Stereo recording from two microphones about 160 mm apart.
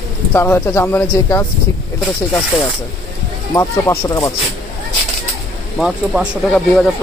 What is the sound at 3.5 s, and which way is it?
Speech, 20° left (ahead or behind).